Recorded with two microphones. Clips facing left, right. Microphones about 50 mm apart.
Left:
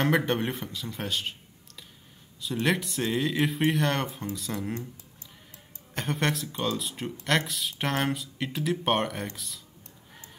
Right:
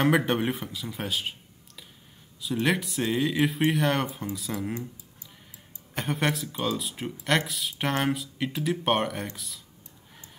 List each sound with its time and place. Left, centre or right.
0.0 s speech: centre
2.4 s speech: centre
5.9 s speech: centre